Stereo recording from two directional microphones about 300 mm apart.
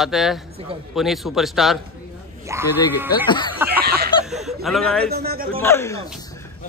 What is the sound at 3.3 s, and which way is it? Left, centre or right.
Speech, centre.